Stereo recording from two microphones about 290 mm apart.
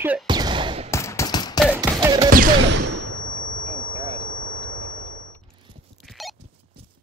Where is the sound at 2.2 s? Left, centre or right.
Right.